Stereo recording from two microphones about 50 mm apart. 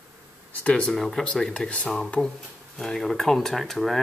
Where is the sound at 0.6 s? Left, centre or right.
Left.